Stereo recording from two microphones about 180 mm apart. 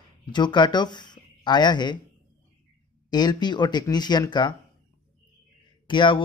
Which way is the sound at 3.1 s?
20° left (ahead or behind).